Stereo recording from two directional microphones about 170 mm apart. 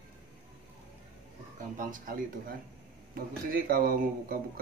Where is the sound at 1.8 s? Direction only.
55° right (ahead or behind).